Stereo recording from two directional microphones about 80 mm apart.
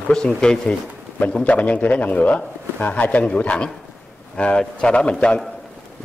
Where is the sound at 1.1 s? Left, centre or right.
Left.